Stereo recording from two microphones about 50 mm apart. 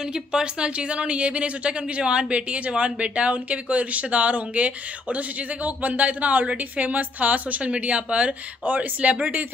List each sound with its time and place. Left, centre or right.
0.1 s speech: centre